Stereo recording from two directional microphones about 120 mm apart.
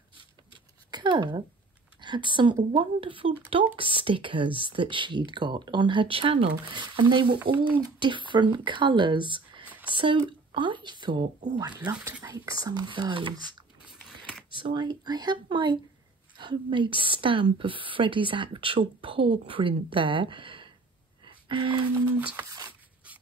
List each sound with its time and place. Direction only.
0.2 s a sound: 40° right (ahead or behind)
2.0 s speech: 40° right (ahead or behind)
7.3 s speech: 15° right (ahead or behind)
7.8 s speech: 40° right (ahead or behind)
14.5 s speech: 40° right (ahead or behind)
21.2 s a sound: 40° right (ahead or behind)
22.2 s speech: 10° right (ahead or behind)